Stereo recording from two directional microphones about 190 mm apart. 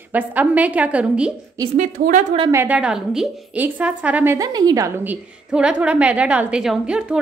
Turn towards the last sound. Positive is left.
turn(degrees=-5)  # may be behind; listen again after turning